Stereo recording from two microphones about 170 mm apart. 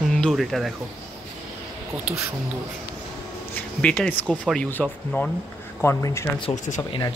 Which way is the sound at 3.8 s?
10° left (ahead or behind).